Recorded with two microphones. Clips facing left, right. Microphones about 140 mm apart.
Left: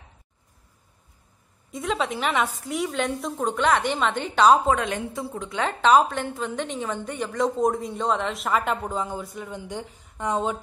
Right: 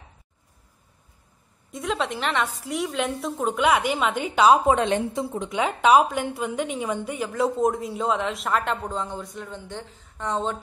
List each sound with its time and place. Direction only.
1.7 s a woman's voice: centre (ahead or behind)
4.6 s a woman's voice: 25° right (ahead or behind); by 10.6 s 10° left (ahead or behind)